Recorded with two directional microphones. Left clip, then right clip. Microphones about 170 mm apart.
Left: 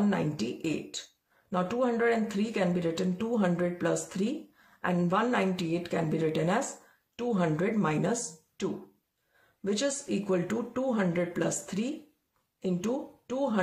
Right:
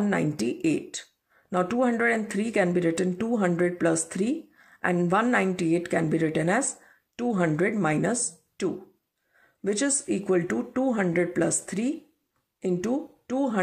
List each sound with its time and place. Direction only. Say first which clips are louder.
0.1 s speech: right 5 dB; 30° right (ahead or behind)